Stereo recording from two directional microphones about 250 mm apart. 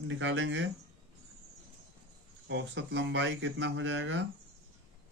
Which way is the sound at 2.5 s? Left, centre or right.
Right.